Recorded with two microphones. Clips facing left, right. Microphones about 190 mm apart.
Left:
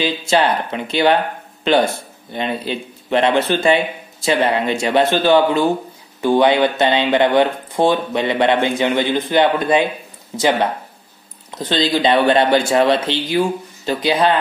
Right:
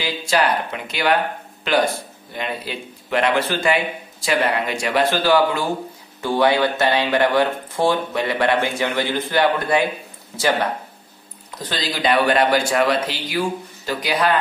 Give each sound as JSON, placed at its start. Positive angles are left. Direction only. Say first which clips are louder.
{"t": 0.0, "sound": "speech", "louder": "left 4 dB", "side_deg": 25}
{"t": 11.5, "sound": "speech", "louder": "left 9 dB", "side_deg": 25}